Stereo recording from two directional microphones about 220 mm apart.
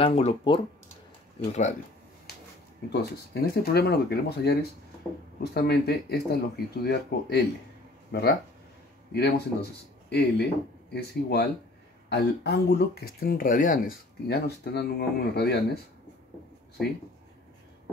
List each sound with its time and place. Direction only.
0.0 s speech: 25° left (ahead or behind)
3.6 s speech: 45° left (ahead or behind)